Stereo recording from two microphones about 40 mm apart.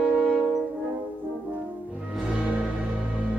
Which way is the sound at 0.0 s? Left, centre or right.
Right.